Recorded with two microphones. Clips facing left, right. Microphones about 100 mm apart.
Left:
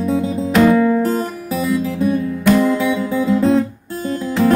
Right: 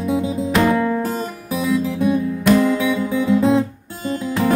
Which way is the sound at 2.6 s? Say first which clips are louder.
Left 1 dB; 15° left (ahead or behind).